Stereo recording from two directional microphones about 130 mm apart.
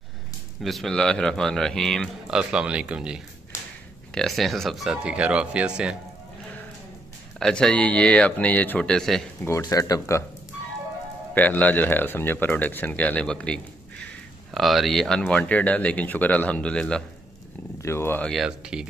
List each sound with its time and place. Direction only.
0.6 s speech: centre (ahead or behind)
2.2 s speech: 10° right (ahead or behind)
7.3 s speech: 5° left (ahead or behind)
9.4 s speech: 25° left (ahead or behind)
11.3 s speech: 15° left (ahead or behind)
17.7 s speech: 20° left (ahead or behind)
18.2 s speech: centre (ahead or behind)